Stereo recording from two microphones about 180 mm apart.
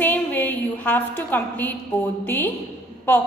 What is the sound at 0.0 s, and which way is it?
A woman's voice, 10° left (ahead or behind).